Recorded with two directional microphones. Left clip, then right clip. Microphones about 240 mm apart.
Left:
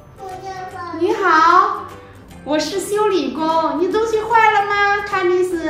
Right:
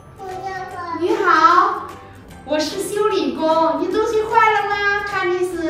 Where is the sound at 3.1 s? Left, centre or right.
Left.